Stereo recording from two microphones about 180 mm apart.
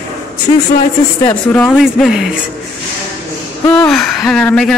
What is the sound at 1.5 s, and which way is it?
Speech, 5° left (ahead or behind).